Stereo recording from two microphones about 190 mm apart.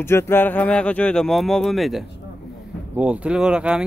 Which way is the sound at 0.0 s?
15° left (ahead or behind).